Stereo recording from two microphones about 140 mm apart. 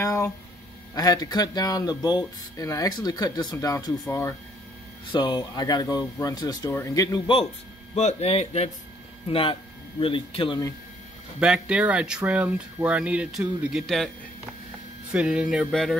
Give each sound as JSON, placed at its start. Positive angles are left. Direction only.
{"t": 0.0, "sound": "a sound", "side_deg": 20}
{"t": 0.9, "sound": "speech", "side_deg": 25}
{"t": 5.1, "sound": "speech", "side_deg": 35}
{"t": 7.9, "sound": "speech", "side_deg": 50}
{"t": 11.3, "sound": "speech", "side_deg": -5}
{"t": 15.1, "sound": "speech", "side_deg": -5}
{"t": 15.5, "sound": "music", "side_deg": 0}